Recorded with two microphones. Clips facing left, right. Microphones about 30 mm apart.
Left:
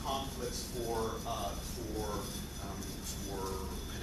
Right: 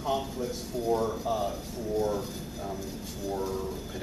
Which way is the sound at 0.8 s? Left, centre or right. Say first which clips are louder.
Right 9 dB; centre.